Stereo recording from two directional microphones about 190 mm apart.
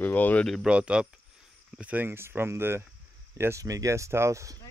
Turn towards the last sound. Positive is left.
turn(degrees=-15)  # may be behind; listen again after turning